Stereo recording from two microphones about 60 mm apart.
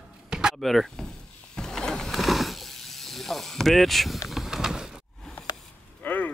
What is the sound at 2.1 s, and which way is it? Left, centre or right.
Snake, centre.